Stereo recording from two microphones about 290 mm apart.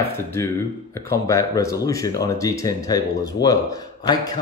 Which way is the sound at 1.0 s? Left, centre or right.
Centre.